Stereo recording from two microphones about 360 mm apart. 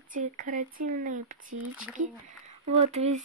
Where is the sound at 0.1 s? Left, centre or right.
Right.